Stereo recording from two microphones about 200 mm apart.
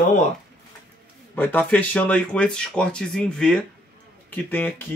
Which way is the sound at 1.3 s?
10° left (ahead or behind).